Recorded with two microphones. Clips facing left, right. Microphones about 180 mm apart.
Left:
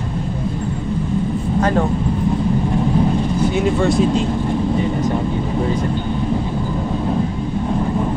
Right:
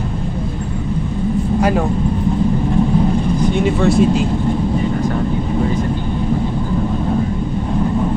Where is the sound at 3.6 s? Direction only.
Centre (ahead or behind).